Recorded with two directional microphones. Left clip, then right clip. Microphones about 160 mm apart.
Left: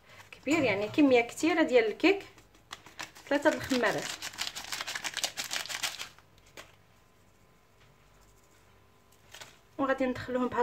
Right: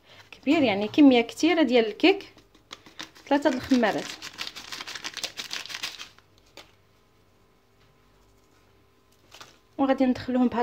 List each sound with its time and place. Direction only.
0.3 s speech: 45° right (ahead or behind)
4.2 s a sound: 5° left (ahead or behind)
9.8 s speech: 40° right (ahead or behind)